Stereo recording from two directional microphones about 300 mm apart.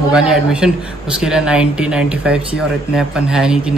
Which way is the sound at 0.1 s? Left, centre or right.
Centre.